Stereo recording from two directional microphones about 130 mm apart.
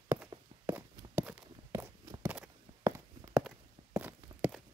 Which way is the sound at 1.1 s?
10° right (ahead or behind).